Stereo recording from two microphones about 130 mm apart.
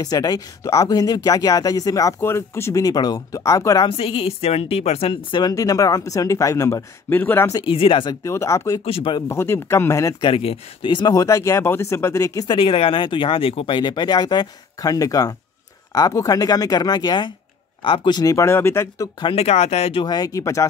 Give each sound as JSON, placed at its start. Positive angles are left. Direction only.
{"t": 0.0, "sound": "speech", "side_deg": 30}
{"t": 3.9, "sound": "a woman's voice", "side_deg": 45}
{"t": 5.3, "sound": "speech", "side_deg": 30}
{"t": 7.6, "sound": "a woman's voice", "side_deg": 45}
{"t": 8.1, "sound": "speech", "side_deg": 25}
{"t": 8.8, "sound": "a woman's voice", "side_deg": 45}
{"t": 9.3, "sound": "speech", "side_deg": 20}
{"t": 10.2, "sound": "speech", "side_deg": 45}
{"t": 12.5, "sound": "speech", "side_deg": 45}
{"t": 19.1, "sound": "speech", "side_deg": 40}
{"t": 19.4, "sound": "speech", "side_deg": 55}
{"t": 20.0, "sound": "speech", "side_deg": 30}